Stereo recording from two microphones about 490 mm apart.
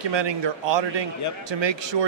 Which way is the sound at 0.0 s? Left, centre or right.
Right.